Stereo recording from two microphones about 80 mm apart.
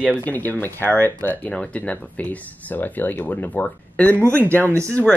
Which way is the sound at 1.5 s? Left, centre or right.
Centre.